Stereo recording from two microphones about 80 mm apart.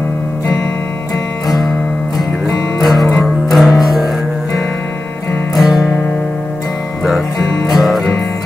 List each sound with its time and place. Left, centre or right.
2.8 s music: centre
5.5 s music: centre
7.7 s music: centre